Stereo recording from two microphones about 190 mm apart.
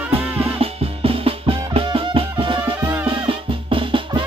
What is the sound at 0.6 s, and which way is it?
Music, 30° right (ahead or behind).